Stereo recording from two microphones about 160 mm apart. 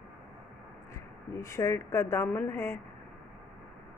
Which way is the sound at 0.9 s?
20° left (ahead or behind).